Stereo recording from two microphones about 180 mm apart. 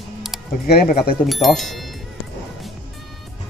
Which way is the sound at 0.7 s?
55° left (ahead or behind).